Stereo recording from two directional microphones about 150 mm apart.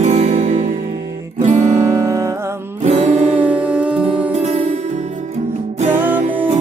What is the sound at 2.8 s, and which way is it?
Music, 50° right (ahead or behind).